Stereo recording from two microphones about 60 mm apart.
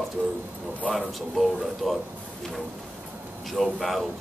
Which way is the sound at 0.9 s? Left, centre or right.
Centre.